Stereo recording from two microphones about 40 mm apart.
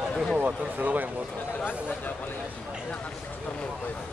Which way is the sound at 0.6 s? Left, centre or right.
Right.